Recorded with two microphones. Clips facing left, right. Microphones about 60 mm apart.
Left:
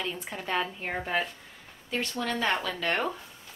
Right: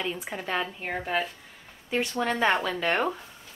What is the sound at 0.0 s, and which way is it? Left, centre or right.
A woman's voice, centre.